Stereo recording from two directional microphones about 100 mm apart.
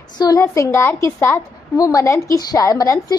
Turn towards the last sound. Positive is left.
turn(degrees=30)  # may be behind; listen again after turning